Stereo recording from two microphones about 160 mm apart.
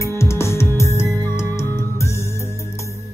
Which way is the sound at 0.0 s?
15° left (ahead or behind).